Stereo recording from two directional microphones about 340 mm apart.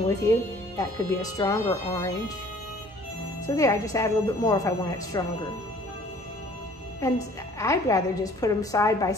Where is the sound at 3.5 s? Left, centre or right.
Centre.